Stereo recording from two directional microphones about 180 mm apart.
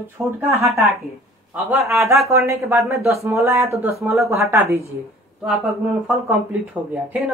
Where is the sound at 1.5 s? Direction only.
10° right (ahead or behind).